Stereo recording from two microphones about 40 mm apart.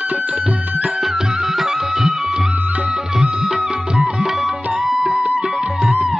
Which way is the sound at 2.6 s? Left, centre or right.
Right.